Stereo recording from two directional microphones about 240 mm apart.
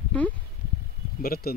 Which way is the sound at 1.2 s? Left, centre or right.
Left.